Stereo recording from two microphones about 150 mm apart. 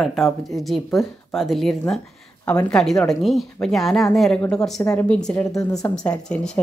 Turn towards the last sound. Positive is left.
turn(degrees=5)  # may be behind; listen again after turning